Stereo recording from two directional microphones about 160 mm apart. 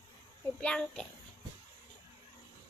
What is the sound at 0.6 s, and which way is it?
Speech, 5° left (ahead or behind).